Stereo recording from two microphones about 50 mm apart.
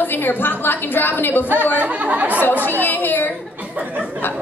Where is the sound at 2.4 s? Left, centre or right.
Left.